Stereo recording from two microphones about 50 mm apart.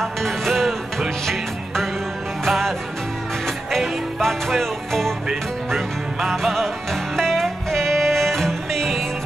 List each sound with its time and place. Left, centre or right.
0.0 s music: centre
4.2 s music: centre